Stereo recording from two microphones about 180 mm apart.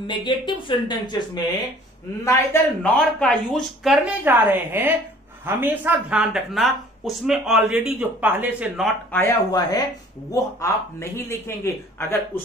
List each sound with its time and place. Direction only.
0.0 s speech: 25° left (ahead or behind)
2.2 s speech: 10° left (ahead or behind); by 8.9 s 5° right (ahead or behind)
9.1 s speech: 15° left (ahead or behind)